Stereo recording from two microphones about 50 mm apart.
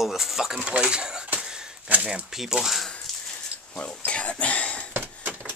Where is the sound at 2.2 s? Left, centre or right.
Centre.